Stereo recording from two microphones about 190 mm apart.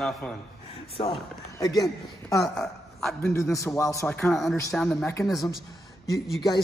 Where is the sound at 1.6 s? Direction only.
20° left (ahead or behind).